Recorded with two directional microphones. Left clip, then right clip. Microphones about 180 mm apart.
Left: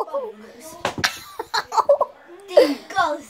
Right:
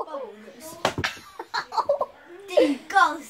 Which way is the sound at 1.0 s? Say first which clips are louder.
Left 6 dB; 60° left (ahead or behind).